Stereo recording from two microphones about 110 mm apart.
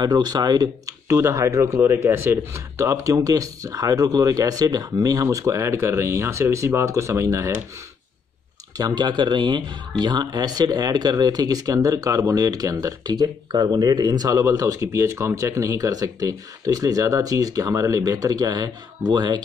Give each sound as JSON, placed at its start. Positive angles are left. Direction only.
{"t": 0.0, "sound": "speech", "side_deg": -40}
{"t": 8.7, "sound": "speech", "side_deg": -40}